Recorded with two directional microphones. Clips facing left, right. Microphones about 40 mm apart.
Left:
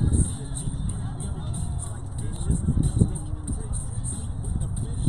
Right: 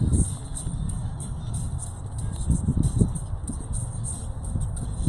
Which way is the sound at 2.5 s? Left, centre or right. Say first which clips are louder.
Even; left.